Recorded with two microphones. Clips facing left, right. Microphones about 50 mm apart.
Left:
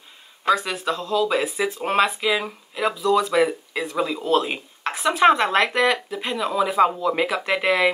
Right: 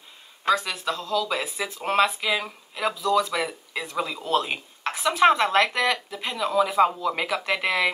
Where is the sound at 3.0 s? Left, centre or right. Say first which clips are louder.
Left 5 dB; left.